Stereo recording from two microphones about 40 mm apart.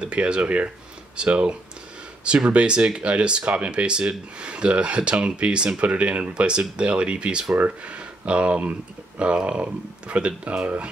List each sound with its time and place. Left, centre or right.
0.0 s speech: right